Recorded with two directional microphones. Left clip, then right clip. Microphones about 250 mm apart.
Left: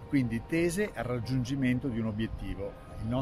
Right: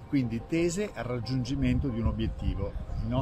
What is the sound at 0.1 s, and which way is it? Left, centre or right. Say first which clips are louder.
Speech: right 1 dB; centre.